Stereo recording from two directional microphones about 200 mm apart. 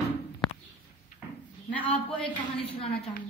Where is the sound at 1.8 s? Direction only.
25° left (ahead or behind).